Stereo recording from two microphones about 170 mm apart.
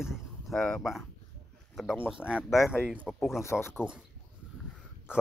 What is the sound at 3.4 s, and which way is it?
Speech, 15° left (ahead or behind).